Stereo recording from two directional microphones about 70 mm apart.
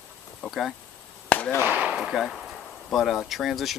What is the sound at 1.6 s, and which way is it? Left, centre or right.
Speech, right.